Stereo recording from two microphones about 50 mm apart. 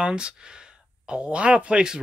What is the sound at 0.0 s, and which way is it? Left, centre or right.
Speech, centre.